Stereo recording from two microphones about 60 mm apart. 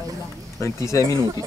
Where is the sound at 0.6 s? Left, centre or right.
Left.